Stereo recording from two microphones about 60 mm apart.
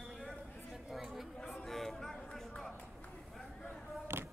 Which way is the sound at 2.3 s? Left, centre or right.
Centre.